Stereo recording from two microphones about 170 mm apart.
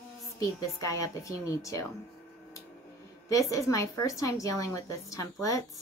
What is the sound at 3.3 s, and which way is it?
A woman's voice, 20° left (ahead or behind).